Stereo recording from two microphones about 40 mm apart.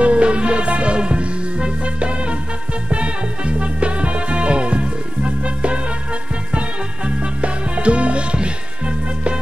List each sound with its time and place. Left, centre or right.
0.0 s music: right
7.1 s music: right